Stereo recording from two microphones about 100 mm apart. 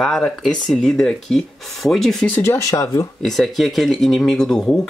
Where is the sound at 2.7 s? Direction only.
35° left (ahead or behind).